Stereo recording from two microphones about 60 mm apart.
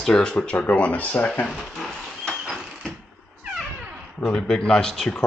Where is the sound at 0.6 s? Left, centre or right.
Left.